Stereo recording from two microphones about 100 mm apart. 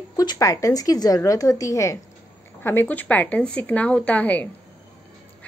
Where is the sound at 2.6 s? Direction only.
20° left (ahead or behind).